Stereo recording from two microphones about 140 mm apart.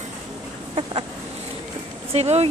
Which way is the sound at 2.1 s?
50° right (ahead or behind).